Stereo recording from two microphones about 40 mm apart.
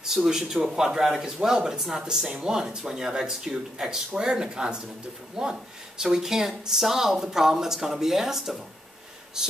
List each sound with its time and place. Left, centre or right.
0.0 s speech: centre